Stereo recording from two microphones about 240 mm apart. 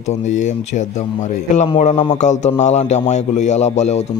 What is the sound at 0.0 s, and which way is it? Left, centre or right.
A man's voice, left.